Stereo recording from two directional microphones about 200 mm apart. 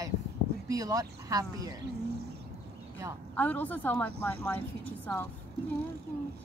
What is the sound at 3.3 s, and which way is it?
A woman's voice, 10° left (ahead or behind).